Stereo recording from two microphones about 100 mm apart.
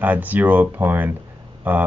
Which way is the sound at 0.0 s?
15° right (ahead or behind).